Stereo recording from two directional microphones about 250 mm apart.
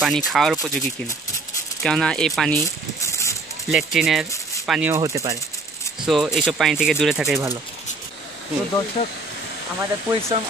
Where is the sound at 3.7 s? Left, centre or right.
Centre.